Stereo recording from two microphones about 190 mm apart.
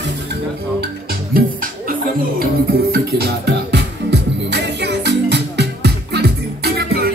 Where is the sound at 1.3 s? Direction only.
50° right (ahead or behind).